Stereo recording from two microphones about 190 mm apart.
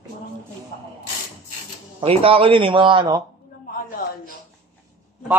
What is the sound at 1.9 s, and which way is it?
Speech, 30° right (ahead or behind).